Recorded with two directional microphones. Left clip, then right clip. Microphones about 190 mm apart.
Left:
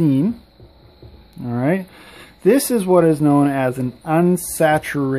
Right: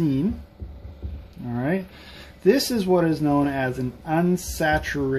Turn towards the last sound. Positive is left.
turn(degrees=45)  # may be behind; listen again after turning